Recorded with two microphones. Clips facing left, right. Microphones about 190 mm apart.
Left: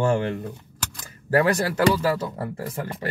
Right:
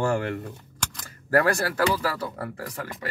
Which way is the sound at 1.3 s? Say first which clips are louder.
Left 2 dB; 20° left (ahead or behind).